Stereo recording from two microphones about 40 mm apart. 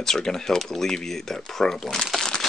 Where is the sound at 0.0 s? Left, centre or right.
Centre.